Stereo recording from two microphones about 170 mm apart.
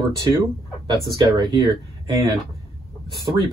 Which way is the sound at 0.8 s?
25° right (ahead or behind).